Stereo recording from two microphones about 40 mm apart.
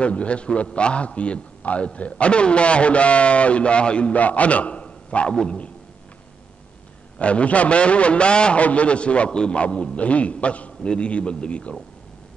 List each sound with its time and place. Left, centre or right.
0.0 s a man's voice: left
7.2 s a man's voice: left